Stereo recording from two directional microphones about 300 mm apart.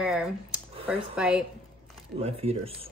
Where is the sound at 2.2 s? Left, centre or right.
Centre.